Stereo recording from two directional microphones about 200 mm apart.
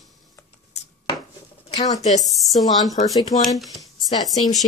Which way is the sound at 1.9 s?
35° left (ahead or behind).